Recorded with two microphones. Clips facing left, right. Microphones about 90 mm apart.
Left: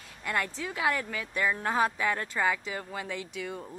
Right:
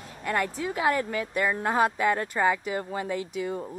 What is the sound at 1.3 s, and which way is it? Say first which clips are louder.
Speech: even; 15° right (ahead or behind).